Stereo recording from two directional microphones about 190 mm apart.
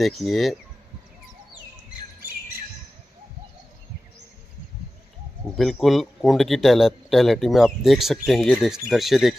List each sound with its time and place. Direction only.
0.0 s a man's voice: centre (ahead or behind)
5.6 s a man's voice: centre (ahead or behind)